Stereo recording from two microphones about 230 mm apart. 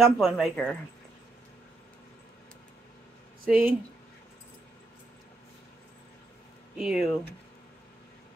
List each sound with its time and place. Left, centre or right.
0.0 s speech: centre
3.4 s speech: centre
6.8 s speech: centre